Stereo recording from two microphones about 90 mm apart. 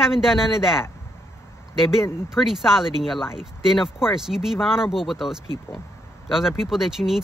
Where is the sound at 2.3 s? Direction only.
5° right (ahead or behind).